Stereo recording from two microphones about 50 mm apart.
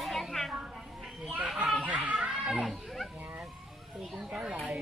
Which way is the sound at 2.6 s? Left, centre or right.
Centre.